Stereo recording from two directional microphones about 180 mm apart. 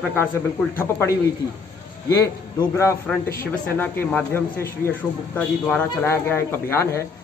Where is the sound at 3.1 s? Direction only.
5° left (ahead or behind).